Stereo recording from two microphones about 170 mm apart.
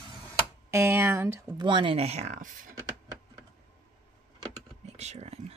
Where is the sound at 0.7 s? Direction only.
15° right (ahead or behind).